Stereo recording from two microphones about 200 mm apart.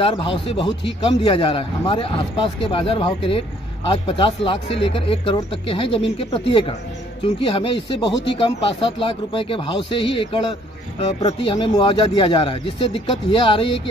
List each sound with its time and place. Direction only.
0.0 s speech: 25° left (ahead or behind)
7.5 s speech: 25° left (ahead or behind)